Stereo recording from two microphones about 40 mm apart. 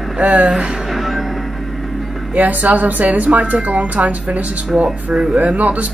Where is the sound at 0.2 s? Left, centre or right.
Right.